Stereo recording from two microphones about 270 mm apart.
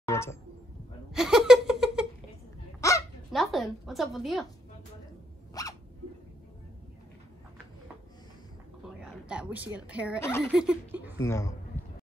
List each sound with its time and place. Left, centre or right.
0.0 s a sound: centre
1.1 s giggle: centre
2.8 s honk: centre
3.3 s a woman's voice: centre
5.5 s zipper: centre
8.8 s a sound: centre
9.8 s speech: centre
11.1 s speech: centre